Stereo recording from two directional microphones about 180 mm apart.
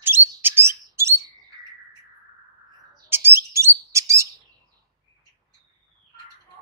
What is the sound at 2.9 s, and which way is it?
Bird, 15° right (ahead or behind).